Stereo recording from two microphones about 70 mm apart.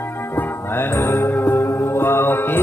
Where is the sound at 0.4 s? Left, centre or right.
Left.